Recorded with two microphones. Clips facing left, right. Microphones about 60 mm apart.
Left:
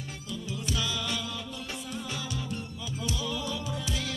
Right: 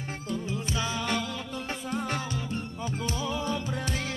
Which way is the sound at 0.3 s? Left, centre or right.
Right.